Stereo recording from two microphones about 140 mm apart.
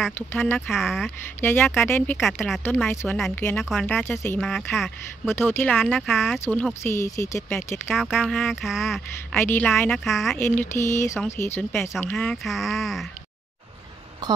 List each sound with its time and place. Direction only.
0.3 s speech: 15° left (ahead or behind)
0.7 s speech: 5° right (ahead or behind)
1.4 s speech: 15° left (ahead or behind)
4.4 s speech: centre (ahead or behind)
5.2 s speech: 15° left (ahead or behind)
6.0 s speech: centre (ahead or behind)
6.4 s speech: 15° left (ahead or behind)
7.9 s speech: 5° right (ahead or behind)
9.3 s speech: 15° left (ahead or behind)
9.9 s speech: centre (ahead or behind)
10.3 s speech: 15° left (ahead or behind)
12.4 s speech: centre (ahead or behind)